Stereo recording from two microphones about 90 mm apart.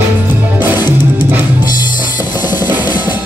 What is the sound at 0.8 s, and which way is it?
Music, 55° left (ahead or behind).